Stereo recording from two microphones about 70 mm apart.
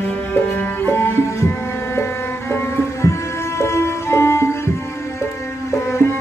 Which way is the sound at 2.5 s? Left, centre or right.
Left.